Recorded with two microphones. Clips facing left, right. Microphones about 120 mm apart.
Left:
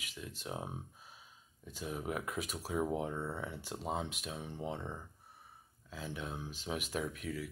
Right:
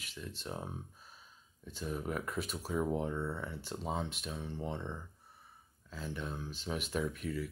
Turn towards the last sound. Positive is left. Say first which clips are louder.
# right 3 dB
turn(degrees=5)  # may be behind; listen again after turning